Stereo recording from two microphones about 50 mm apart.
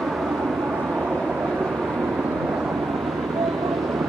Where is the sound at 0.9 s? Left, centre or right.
Right.